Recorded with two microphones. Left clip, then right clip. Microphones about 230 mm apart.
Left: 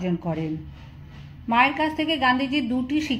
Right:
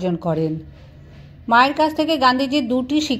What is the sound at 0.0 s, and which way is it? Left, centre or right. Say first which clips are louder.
Speech: right 7 dB; right.